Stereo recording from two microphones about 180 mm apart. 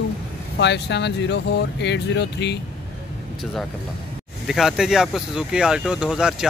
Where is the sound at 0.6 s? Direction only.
70° left (ahead or behind).